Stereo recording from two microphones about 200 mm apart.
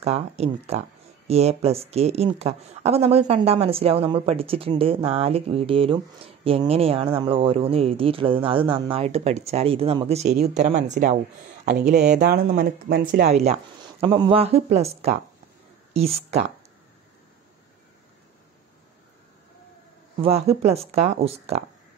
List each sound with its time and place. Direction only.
0.0 s speech: 30° right (ahead or behind)
12.0 s speech: 55° right (ahead or behind)
12.4 s speech: 45° right (ahead or behind)
15.9 s speech: 30° right (ahead or behind)
20.2 s speech: 30° right (ahead or behind)